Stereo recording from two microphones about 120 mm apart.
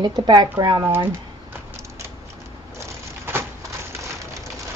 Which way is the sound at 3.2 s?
20° right (ahead or behind).